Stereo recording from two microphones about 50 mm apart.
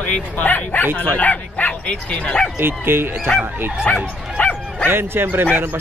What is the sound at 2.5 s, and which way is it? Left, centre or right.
Speech, right.